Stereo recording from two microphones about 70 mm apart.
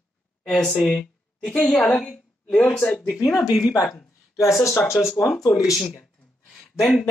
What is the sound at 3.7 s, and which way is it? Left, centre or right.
Speech, left.